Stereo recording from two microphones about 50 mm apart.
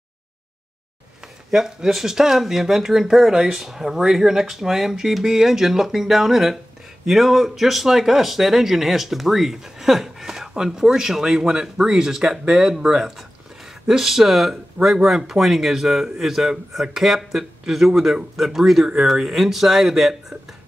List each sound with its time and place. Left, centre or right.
1.5 s speech: centre